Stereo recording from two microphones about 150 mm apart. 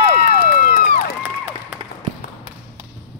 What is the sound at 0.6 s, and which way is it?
Crowd, 80° left.